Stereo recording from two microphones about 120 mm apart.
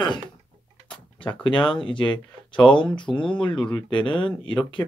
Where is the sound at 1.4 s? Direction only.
45° left (ahead or behind).